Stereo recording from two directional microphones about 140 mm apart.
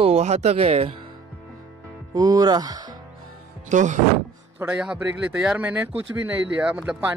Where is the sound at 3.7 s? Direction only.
60° right (ahead or behind).